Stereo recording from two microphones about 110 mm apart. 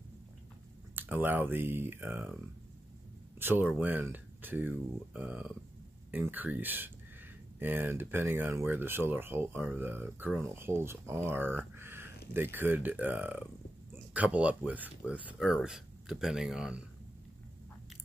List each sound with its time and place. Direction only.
0.9 s speech: 15° right (ahead or behind)
3.3 s speech: 20° right (ahead or behind)